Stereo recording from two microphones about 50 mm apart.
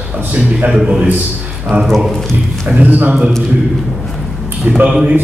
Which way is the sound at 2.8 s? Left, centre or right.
Right.